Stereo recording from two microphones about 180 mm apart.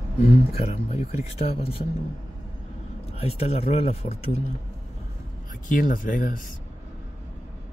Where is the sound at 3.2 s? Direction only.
35° left (ahead or behind).